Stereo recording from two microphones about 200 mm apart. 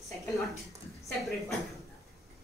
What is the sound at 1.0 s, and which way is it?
Speech, centre (ahead or behind).